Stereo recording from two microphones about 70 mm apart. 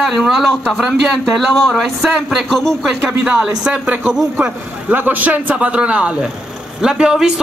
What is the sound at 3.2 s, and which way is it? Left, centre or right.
A man's voice, centre.